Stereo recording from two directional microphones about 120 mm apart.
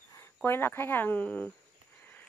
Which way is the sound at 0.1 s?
20° left (ahead or behind).